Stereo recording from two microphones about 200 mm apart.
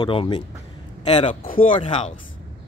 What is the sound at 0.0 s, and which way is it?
A man's voice, 25° left (ahead or behind).